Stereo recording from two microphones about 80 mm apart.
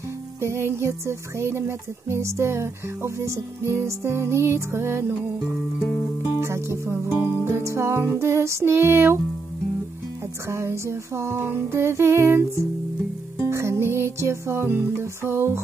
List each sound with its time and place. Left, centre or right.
0.4 s music: right
6.4 s music: right
10.5 s music: right